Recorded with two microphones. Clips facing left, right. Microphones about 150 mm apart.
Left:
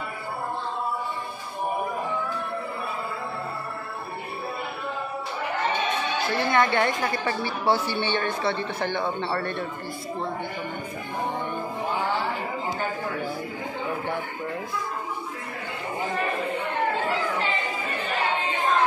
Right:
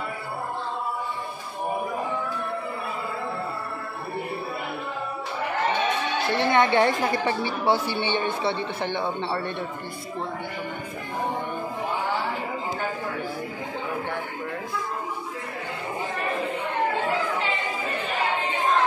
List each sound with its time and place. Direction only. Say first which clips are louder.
6.3 s a woman's voice: right 3 dB; 25° right (ahead or behind)